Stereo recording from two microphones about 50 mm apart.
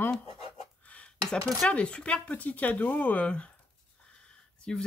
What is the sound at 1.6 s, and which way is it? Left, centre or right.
Speech, left.